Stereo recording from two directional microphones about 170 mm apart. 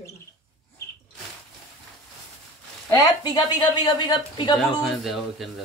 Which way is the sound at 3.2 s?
25° left (ahead or behind).